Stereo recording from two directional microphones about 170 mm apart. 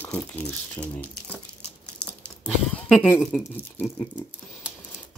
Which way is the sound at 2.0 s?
5° left (ahead or behind).